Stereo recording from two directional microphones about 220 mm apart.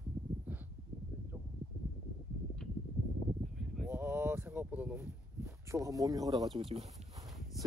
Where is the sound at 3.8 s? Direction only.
10° right (ahead or behind).